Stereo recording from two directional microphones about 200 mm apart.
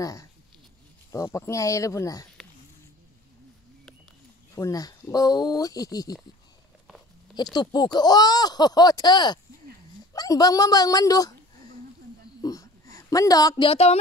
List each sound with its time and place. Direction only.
0.0 s speech: 15° left (ahead or behind)
4.6 s speech: 15° left (ahead or behind)
7.5 s speech: 20° left (ahead or behind)
12.4 s a sound: 15° left (ahead or behind)